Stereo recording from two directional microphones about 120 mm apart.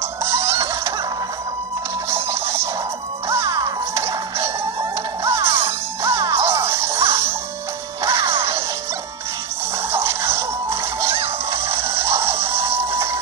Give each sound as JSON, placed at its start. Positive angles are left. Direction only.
{"t": 0.2, "sound": "music", "side_deg": -20}
{"t": 2.0, "sound": "printer", "side_deg": -20}
{"t": 3.3, "sound": "music", "side_deg": -25}
{"t": 9.9, "sound": "music", "side_deg": -20}
{"t": 11.1, "sound": "music", "side_deg": -50}
{"t": 11.9, "sound": "music", "side_deg": -20}
{"t": 12.3, "sound": "music", "side_deg": -55}